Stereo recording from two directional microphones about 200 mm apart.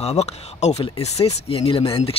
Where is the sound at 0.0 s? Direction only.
30° left (ahead or behind).